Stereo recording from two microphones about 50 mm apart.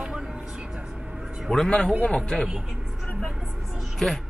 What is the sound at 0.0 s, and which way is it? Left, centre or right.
Vehicle, centre.